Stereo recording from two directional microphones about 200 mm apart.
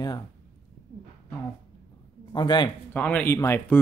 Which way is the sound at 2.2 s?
20° left (ahead or behind).